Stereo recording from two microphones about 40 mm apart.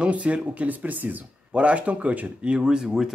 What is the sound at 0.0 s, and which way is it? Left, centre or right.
Speech, right.